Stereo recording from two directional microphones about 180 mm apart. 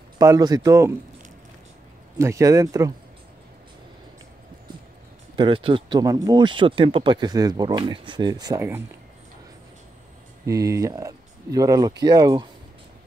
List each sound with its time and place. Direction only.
0.2 s speech: 20° right (ahead or behind)
2.1 s speech: 15° right (ahead or behind)
5.3 s speech: 30° right (ahead or behind)
10.4 s speech: 15° right (ahead or behind)